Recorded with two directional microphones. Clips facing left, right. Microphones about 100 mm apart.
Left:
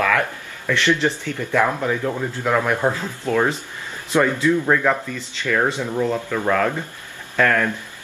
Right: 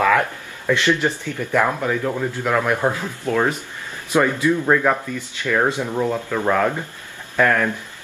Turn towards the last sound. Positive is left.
turn(degrees=-15)  # may be behind; listen again after turning